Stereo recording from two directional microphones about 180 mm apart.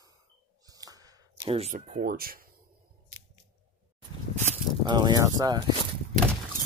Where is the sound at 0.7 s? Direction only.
20° right (ahead or behind).